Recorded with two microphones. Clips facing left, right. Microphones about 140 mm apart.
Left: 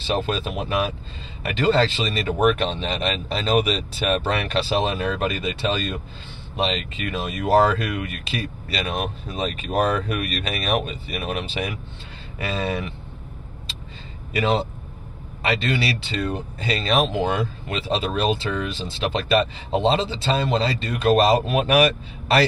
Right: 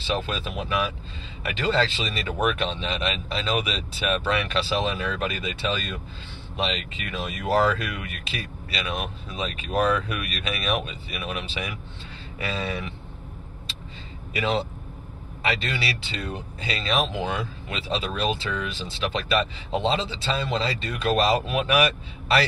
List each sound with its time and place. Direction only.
0.0 s speech: 45° left (ahead or behind)
12.5 s speech: 40° left (ahead or behind)
14.3 s speech: 40° left (ahead or behind)